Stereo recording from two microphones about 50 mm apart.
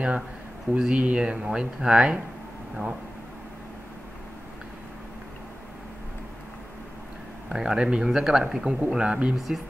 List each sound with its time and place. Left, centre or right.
0.7 s speech: centre
7.4 s speech: centre
9.3 s speech: centre